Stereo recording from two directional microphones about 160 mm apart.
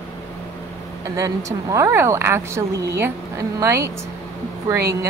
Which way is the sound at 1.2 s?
20° right (ahead or behind).